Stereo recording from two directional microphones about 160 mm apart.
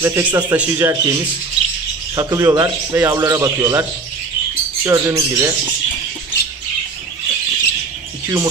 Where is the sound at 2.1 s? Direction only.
20° right (ahead or behind).